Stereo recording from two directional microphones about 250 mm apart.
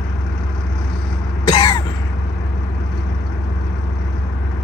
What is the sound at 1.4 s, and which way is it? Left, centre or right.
Cough, centre.